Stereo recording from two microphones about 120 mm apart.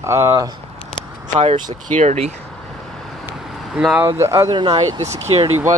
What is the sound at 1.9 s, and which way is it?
Speech, 70° right (ahead or behind).